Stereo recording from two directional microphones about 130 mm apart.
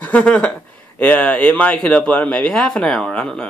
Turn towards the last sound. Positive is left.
turn(degrees=5)  # may be behind; listen again after turning